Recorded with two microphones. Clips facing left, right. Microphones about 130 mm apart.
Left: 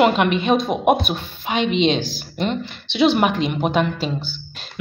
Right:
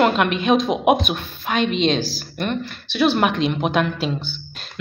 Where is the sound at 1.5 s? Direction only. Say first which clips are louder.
Left 1 dB; 50° right (ahead or behind).